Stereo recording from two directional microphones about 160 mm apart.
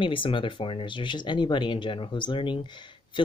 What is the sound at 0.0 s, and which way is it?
Speech, 30° left (ahead or behind).